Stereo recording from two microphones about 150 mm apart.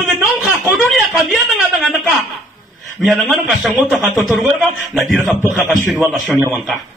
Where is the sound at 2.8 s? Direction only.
Centre (ahead or behind).